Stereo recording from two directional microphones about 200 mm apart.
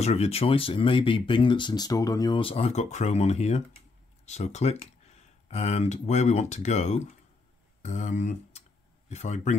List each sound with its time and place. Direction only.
0.0 s speech: 30° left (ahead or behind)